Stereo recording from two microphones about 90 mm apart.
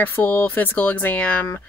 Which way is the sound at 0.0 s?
20° left (ahead or behind).